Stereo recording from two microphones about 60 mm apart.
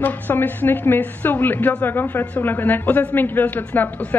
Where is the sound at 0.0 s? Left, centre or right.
Left.